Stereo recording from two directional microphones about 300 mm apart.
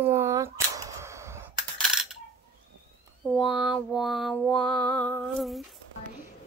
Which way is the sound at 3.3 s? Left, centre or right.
Centre.